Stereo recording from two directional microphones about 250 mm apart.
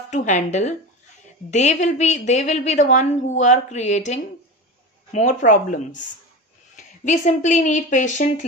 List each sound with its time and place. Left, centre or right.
0.1 s a woman's voice: left